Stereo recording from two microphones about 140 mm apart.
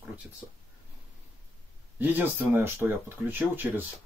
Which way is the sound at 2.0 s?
15° right (ahead or behind).